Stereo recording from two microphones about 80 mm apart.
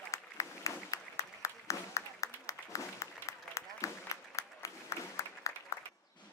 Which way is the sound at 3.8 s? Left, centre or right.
Left.